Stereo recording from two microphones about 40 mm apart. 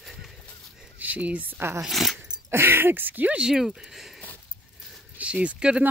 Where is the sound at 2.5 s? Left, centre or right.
Right.